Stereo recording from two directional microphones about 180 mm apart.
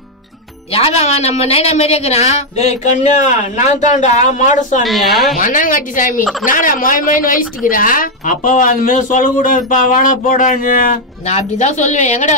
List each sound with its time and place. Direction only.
0.7 s a woman's voice: 35° left (ahead or behind)
4.8 s a woman's voice: centre (ahead or behind)
5.4 s a woman's voice: 45° left (ahead or behind)